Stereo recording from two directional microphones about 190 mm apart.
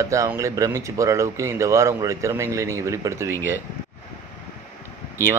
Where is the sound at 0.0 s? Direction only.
15° right (ahead or behind).